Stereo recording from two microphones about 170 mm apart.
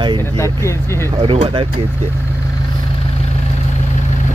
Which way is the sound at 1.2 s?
30° right (ahead or behind).